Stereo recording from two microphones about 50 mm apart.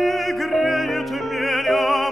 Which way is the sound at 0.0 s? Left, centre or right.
Centre.